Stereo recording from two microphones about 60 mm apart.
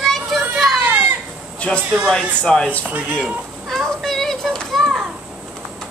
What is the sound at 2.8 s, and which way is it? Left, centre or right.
Speech, centre.